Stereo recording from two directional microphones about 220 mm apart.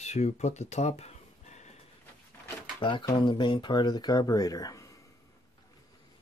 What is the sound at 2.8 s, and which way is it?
Speech, 20° left (ahead or behind).